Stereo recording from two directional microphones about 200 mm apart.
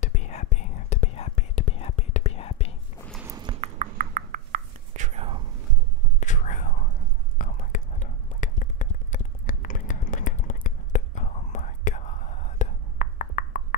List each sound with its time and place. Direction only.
0.0 s whispering: 35° left (ahead or behind)
3.3 s a sound: 20° right (ahead or behind)
3.7 s whispering: 40° right (ahead or behind)
6.1 s whispering: 40° left (ahead or behind)